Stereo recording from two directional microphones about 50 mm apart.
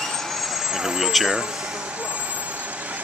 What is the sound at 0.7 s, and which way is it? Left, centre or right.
Speech, centre.